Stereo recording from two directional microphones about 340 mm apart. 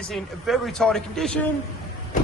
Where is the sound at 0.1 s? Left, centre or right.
Centre.